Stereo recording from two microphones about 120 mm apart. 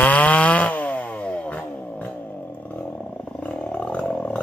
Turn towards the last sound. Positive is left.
turn(degrees=10)  # may be behind; listen again after turning